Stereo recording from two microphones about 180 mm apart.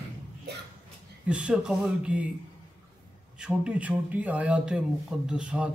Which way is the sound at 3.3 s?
5° right (ahead or behind).